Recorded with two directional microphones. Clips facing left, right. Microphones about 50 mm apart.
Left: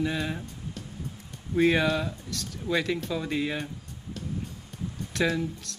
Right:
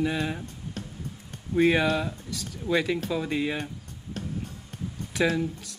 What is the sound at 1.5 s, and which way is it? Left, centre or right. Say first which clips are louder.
Speech: right 1 dB; centre.